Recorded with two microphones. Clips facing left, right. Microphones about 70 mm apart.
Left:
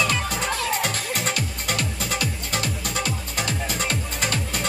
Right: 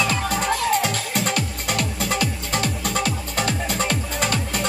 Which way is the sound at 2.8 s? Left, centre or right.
Centre.